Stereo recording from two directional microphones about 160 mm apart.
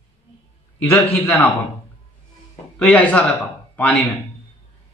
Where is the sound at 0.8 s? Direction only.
15° left (ahead or behind).